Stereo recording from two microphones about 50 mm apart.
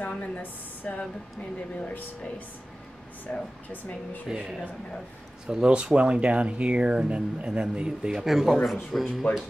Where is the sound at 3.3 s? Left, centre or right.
Left.